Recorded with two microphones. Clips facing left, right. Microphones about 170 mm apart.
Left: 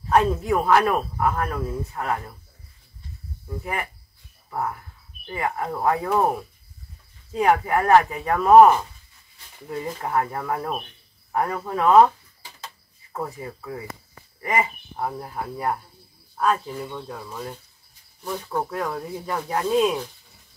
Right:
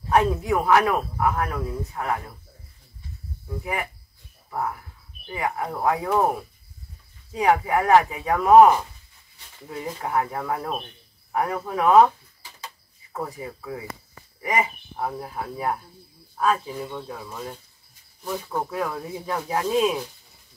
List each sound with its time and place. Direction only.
0.1 s speech: 10° right (ahead or behind)
0.5 s speech: centre (ahead or behind)
3.4 s speech: 5° right (ahead or behind)
7.4 s speech: 10° right (ahead or behind)
9.7 s speech: 5° right (ahead or behind)
13.1 s speech: centre (ahead or behind)
14.4 s speech: 15° right (ahead or behind)
15.0 s speech: centre (ahead or behind)